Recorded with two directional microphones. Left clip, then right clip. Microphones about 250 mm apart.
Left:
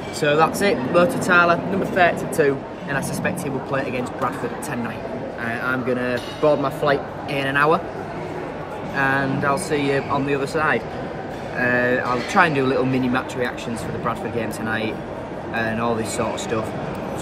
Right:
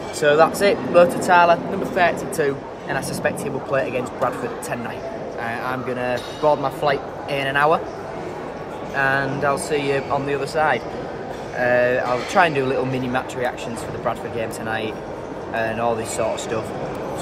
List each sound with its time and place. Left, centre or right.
0.2 s speech: centre
5.5 s speech: right
6.8 s speech: centre
8.9 s speech: centre